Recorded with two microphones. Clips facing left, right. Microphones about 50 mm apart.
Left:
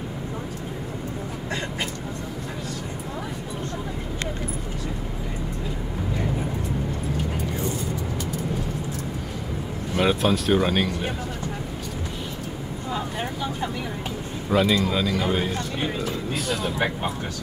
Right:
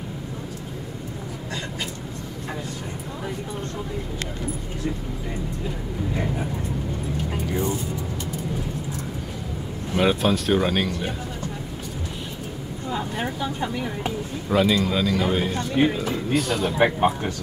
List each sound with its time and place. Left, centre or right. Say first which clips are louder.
9.9 s speech: right 1 dB; centre
12.9 s a sound: right 2 dB; centre
14.5 s speech: right 1 dB; centre
15.5 s speech: right 7 dB; centre
15.9 s a sound: right 2 dB; centre
16.3 s speech: right 5 dB; centre
16.7 s speech: right 6 dB; centre